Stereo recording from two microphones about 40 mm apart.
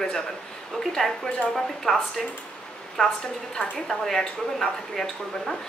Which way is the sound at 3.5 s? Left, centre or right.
Centre.